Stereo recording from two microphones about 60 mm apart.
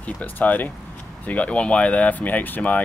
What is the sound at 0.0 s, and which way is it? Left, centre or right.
Speech, left.